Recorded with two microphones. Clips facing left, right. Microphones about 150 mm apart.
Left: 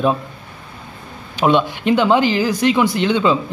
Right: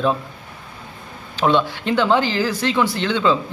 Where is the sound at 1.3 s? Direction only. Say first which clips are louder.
Left 2 dB; 15° left (ahead or behind).